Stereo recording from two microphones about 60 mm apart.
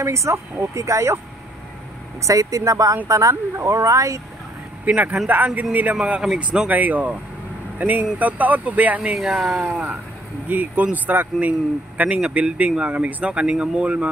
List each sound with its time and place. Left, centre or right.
0.0 s speech: right
2.2 s speech: right
3.1 s speech: right
4.8 s speech: right
9.1 s speech: centre
9.7 s speech: right